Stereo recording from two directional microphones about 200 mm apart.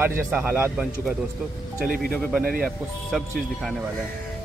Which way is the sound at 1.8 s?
45° right (ahead or behind).